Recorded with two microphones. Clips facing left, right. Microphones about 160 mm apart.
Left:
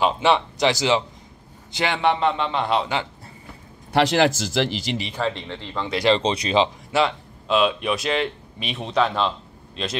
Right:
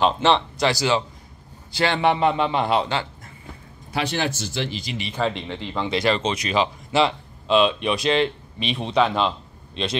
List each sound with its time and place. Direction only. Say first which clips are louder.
0.0 s a man's voice: even; 10° left (ahead or behind)
2.0 s a man's voice: right 1 dB; 5° right (ahead or behind)
3.9 s speech: left 7 dB; 90° left
5.3 s a man's voice: right 2 dB; 15° right (ahead or behind)
6.0 s speech: left 6 dB; 30° left (ahead or behind)
6.9 s speech: right 1 dB; 5° left (ahead or behind)